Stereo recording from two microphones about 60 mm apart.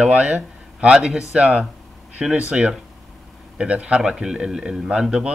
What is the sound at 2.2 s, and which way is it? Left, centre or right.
Speech, centre.